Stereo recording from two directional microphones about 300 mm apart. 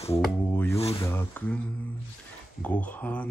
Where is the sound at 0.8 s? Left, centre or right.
Centre.